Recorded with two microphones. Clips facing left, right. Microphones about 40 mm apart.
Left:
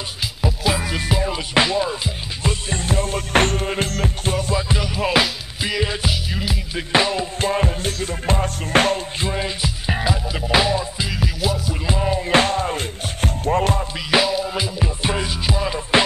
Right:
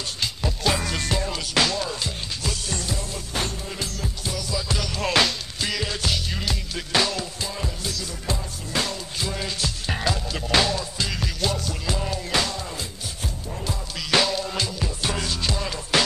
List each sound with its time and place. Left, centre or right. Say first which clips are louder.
0.4 s music: left 4 dB; centre; by 4.6 s left
4.6 s music: left 4 dB; left
6.9 s music: left 5 dB; left
7.3 s music: left 10 dB; left
9.2 s music: left 4 dB; left; by 11.7 s centre
11.8 s music: left 6 dB; left
12.3 s music: left 9 dB; left
13.5 s music: left 15 dB; left
14.1 s music: left 4 dB; centre